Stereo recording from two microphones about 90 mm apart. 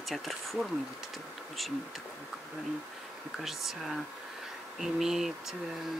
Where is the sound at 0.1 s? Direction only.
Centre (ahead or behind).